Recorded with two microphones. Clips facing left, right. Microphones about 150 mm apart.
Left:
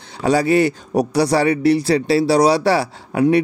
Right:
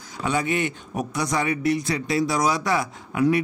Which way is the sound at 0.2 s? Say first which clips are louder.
Left 9 dB; 35° left (ahead or behind).